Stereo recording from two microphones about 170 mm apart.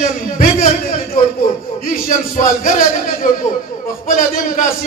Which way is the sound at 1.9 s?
50° left (ahead or behind).